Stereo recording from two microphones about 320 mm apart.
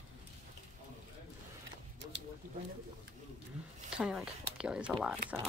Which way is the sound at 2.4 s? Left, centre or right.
Right.